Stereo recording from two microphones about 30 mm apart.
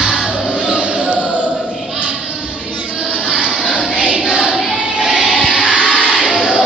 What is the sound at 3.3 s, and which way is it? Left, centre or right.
Music, right.